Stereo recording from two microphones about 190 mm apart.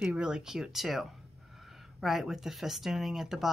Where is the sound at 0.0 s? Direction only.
5° right (ahead or behind).